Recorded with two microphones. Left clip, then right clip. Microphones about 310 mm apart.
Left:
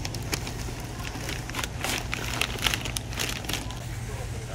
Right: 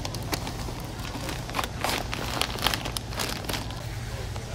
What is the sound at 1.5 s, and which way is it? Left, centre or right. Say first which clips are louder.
Crumpling: right 3 dB; centre.